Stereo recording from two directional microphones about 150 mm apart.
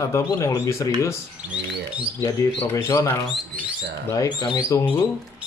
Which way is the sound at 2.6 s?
15° left (ahead or behind).